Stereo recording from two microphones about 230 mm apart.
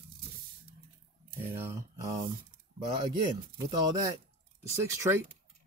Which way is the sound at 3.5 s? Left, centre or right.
Centre.